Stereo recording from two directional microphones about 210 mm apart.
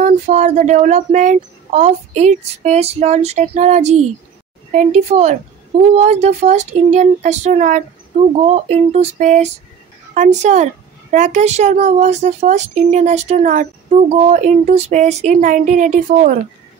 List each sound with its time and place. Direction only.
0.0 s a woman's voice: 35° right (ahead or behind)